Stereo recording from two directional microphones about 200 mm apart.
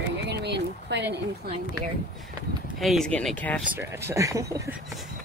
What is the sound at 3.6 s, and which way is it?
Speech, 10° right (ahead or behind).